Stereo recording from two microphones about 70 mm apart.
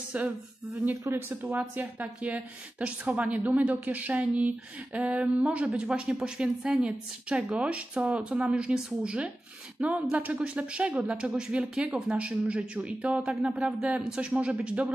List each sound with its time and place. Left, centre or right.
0.1 s a woman's voice: centre
1.0 s speech: right
1.8 s a woman's voice: right